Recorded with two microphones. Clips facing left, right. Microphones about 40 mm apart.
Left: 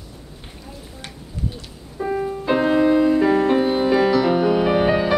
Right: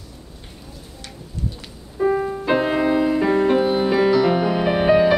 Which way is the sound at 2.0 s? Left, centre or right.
Centre.